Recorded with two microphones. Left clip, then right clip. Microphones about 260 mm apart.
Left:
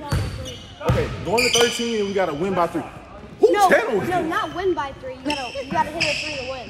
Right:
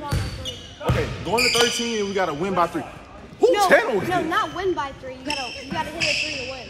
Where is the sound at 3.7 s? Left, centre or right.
Right.